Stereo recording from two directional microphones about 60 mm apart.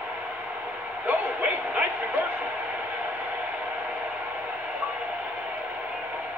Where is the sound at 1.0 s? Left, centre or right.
Right.